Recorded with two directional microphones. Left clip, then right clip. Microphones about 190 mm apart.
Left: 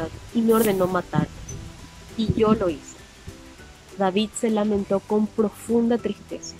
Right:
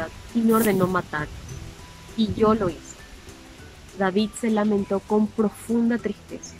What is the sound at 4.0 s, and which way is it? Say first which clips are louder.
Speech: left 1 dB; 10° left (ahead or behind).